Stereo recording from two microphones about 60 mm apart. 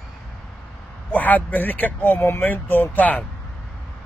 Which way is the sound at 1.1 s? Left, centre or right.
Left.